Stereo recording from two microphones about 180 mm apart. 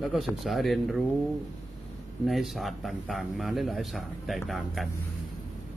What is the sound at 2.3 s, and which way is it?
Speech, centre (ahead or behind).